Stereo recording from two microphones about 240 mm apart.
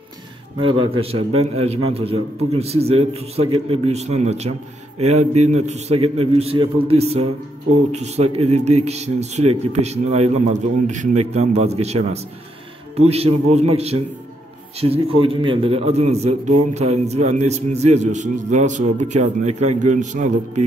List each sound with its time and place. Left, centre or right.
0.6 s a man's voice: right